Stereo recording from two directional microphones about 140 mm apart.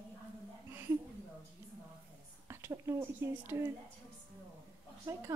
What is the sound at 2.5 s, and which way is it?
Speech, 20° right (ahead or behind).